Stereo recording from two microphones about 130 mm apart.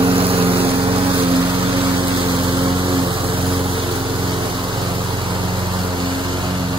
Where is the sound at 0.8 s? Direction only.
40° right (ahead or behind).